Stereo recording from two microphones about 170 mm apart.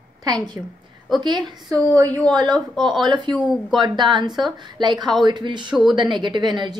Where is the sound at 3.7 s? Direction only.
25° right (ahead or behind).